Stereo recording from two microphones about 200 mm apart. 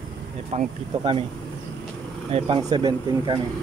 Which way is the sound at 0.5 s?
30° right (ahead or behind).